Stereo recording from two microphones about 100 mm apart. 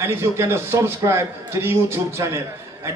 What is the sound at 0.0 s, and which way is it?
A man's voice, 25° right (ahead or behind).